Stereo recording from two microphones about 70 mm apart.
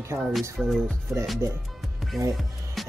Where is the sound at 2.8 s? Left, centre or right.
Centre.